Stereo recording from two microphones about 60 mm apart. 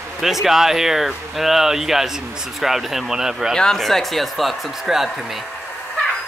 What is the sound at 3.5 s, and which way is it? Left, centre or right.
Speech, centre.